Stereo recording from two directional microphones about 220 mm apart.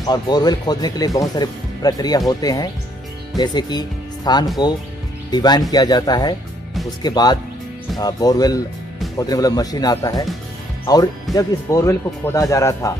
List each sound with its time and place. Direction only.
0.0 s speech: 20° left (ahead or behind)